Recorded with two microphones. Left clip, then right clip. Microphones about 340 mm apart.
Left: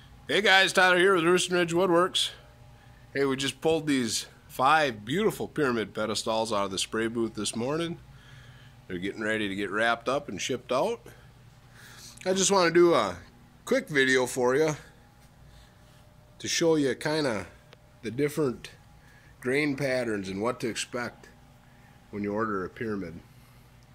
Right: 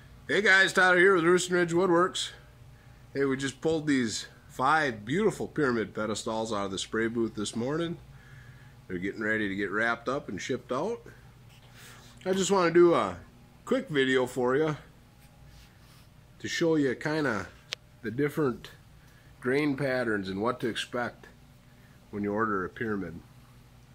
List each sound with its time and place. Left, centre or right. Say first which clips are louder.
0.3 s a man's voice: left 1 dB; centre
12.2 s a man's voice: left 2 dB; centre
16.3 s a man's voice: left 2 dB; centre
17.7 s a sound: right 16 dB; right
18.0 s a man's voice: left 1 dB; centre